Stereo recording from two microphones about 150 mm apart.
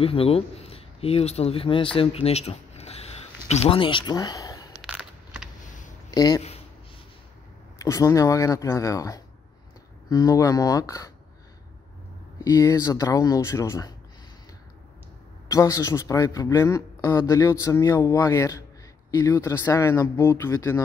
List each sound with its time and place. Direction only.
0.0 s speech: 40° left (ahead or behind)
4.8 s a sound: 5° right (ahead or behind)
6.1 s a man's voice: 25° left (ahead or behind)
7.8 s a man's voice: 20° left (ahead or behind)
12.4 s a man's voice: 20° left (ahead or behind)
15.4 s a man's voice: 20° left (ahead or behind)